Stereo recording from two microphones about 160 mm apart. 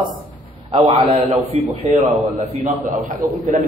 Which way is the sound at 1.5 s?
45° right (ahead or behind).